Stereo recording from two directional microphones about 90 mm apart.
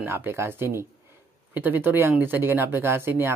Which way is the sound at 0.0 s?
25° right (ahead or behind).